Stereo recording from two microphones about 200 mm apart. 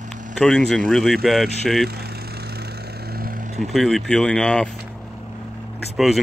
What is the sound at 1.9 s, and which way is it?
Vehicle, 50° right (ahead or behind).